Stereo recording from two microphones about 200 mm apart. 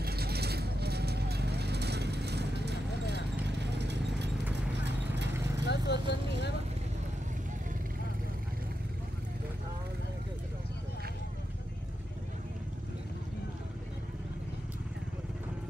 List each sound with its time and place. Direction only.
0.0 s vehicle: 50° right (ahead or behind)
4.6 s clip-clop: 60° right (ahead or behind)
5.3 s vehicle: 15° right (ahead or behind)
5.7 s speech: 55° left (ahead or behind)